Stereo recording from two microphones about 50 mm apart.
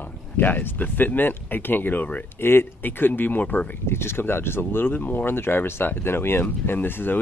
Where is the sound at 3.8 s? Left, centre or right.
Left.